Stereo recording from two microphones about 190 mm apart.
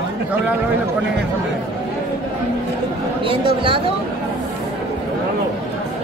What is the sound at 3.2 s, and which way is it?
Speech, 30° right (ahead or behind).